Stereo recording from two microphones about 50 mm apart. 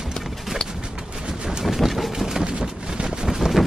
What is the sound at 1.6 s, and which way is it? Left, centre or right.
Vehicle, centre.